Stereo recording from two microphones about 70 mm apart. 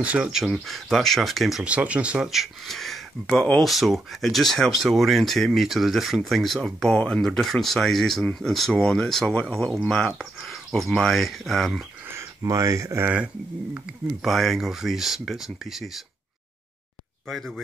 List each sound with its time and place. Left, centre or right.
0.0 s speech: centre
0.3 s speech: centre
1.6 s speech: centre
2.2 s speech: centre
12.4 s speech: right
14.2 s speech: centre